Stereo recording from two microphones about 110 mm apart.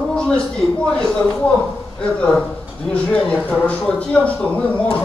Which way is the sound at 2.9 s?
10° left (ahead or behind).